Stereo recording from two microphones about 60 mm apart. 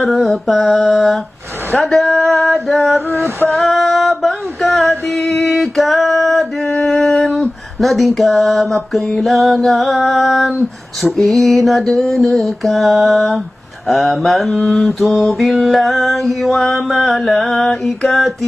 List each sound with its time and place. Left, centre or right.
0.0 s music: centre
3.1 s a sound: right
3.5 s music: centre